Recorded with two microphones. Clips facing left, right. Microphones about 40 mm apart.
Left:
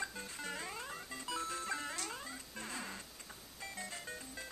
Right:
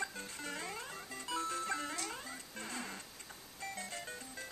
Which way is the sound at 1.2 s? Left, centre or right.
Right.